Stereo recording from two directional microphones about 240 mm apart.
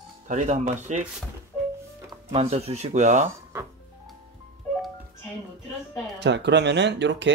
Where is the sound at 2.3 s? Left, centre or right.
Right.